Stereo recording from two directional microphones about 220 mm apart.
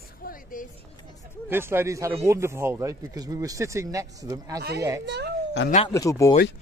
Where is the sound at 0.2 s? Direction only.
40° left (ahead or behind).